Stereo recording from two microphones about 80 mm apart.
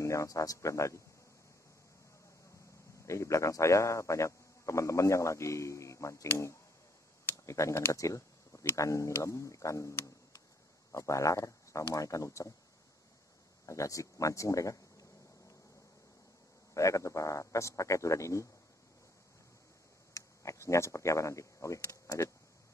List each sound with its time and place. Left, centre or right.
0.0 s a man's voice: left
3.1 s a man's voice: left
13.7 s speech: left
16.7 s a man's voice: left
20.2 s speech: left